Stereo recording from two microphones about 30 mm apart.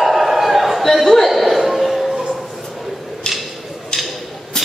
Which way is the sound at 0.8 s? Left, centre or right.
Centre.